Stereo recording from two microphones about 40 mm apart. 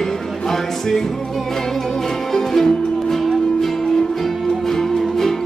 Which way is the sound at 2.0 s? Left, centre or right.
Centre.